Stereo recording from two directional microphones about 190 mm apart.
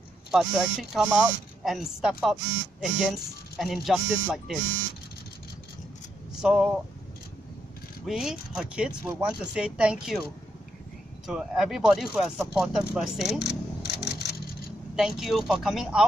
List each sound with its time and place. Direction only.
0.3 s speech: centre (ahead or behind)
6.3 s speech: 5° right (ahead or behind)
8.0 s speech: centre (ahead or behind)
11.2 s speech: 5° right (ahead or behind)
13.4 s a sound: 60° left (ahead or behind)
15.0 s speech: centre (ahead or behind)